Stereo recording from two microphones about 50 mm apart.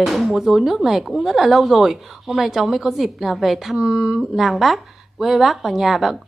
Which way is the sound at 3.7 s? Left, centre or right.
Centre.